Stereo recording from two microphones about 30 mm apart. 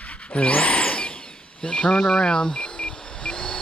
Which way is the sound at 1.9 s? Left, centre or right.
Centre.